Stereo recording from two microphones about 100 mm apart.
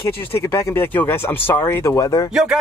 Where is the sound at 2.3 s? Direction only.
5° right (ahead or behind).